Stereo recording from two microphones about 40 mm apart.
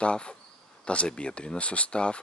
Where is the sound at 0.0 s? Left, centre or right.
Left.